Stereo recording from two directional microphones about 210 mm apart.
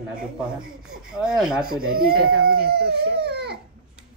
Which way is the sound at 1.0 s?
5° right (ahead or behind).